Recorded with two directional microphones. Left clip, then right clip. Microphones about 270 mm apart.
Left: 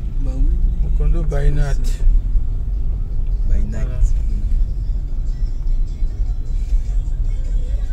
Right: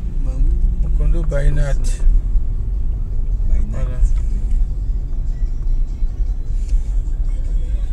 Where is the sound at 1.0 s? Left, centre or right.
Centre.